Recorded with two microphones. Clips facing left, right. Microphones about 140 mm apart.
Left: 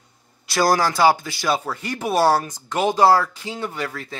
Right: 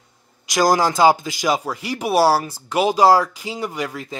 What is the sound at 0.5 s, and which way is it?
Speech, 15° right (ahead or behind).